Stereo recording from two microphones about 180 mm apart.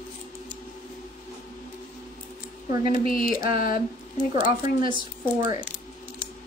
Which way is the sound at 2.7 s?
25° right (ahead or behind).